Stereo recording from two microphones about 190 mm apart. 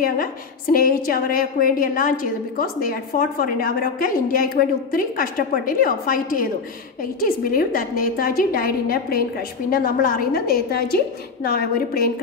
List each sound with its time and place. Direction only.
0.0 s a woman's voice: 50° left (ahead or behind)